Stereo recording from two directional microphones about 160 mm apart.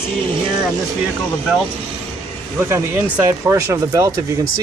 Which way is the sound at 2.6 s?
15° right (ahead or behind).